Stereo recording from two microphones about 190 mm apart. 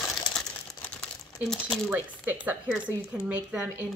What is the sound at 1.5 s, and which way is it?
Speech, centre (ahead or behind).